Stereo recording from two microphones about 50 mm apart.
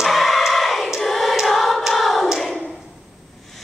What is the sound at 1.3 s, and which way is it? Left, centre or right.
Hands, centre.